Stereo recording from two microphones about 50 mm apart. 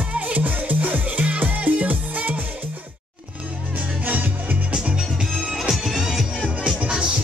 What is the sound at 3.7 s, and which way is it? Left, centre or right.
Music, right.